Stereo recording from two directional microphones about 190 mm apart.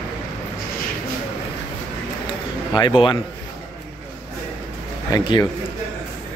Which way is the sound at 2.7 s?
25° left (ahead or behind).